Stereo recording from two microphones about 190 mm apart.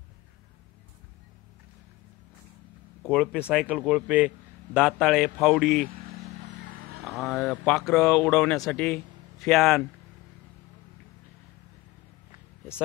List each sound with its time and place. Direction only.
3.0 s speech: centre (ahead or behind)
6.6 s vehicle: 50° right (ahead or behind)
7.1 s speech: centre (ahead or behind)